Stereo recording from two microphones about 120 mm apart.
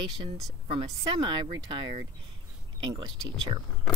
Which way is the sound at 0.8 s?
35° right (ahead or behind).